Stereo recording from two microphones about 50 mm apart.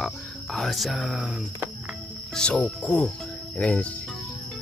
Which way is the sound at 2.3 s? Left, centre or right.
Centre.